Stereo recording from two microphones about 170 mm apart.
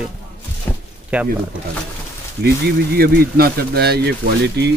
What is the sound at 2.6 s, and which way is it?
Speech, 65° right (ahead or behind).